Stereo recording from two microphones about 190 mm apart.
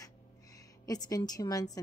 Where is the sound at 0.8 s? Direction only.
20° left (ahead or behind).